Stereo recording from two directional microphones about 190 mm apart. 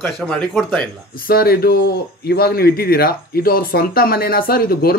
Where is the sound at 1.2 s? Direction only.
55° left (ahead or behind).